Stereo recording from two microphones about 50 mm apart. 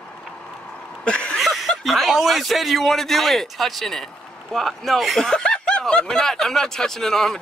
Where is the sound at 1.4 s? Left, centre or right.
Centre.